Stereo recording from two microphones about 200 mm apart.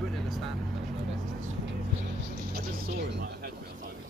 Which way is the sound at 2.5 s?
55° right (ahead or behind).